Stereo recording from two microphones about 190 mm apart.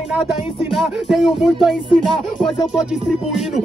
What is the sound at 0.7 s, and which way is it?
Music, centre (ahead or behind).